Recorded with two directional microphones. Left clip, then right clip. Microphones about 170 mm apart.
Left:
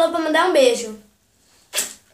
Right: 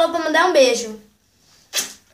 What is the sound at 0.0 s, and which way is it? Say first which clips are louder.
Speech: right 1 dB; 10° right (ahead or behind).